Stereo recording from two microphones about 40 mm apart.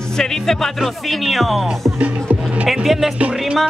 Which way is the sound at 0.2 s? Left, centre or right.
Centre.